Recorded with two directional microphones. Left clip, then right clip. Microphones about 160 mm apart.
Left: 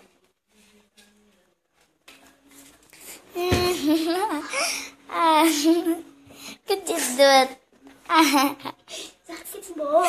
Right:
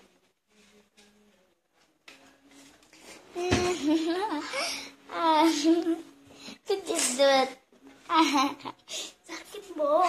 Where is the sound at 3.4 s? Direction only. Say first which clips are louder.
Left 5 dB; 15° left (ahead or behind).